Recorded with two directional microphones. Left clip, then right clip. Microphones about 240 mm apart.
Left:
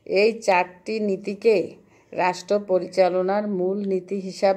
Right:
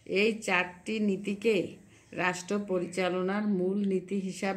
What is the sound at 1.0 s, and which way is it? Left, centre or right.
Speech, centre.